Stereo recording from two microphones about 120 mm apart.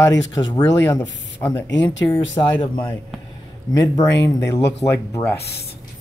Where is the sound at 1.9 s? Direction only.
40° left (ahead or behind).